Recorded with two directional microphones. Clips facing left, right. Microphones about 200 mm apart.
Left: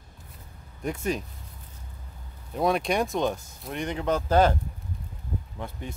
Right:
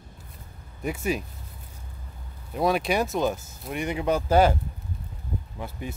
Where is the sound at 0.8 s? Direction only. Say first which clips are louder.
Right 1 dB; 10° right (ahead or behind).